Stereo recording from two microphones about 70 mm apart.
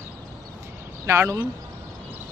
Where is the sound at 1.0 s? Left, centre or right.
Right.